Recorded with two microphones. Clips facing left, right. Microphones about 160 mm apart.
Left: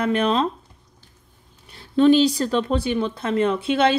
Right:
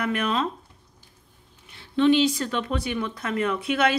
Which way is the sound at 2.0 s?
40° left (ahead or behind).